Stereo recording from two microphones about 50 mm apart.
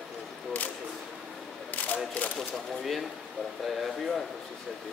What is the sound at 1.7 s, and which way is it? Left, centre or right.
Single-lens reflex camera, left.